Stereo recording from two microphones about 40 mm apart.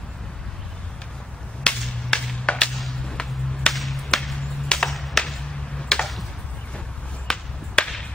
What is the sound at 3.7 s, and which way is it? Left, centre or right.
Whip, centre.